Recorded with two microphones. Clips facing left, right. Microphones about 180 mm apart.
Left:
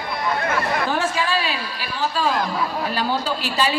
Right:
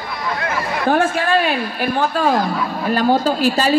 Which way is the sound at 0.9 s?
55° right (ahead or behind).